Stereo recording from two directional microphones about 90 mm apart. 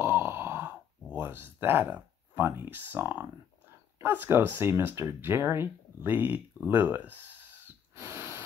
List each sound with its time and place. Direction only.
0.0 s a sound: 25° right (ahead or behind)
1.1 s speech: 20° right (ahead or behind)
7.9 s owl: 30° right (ahead or behind)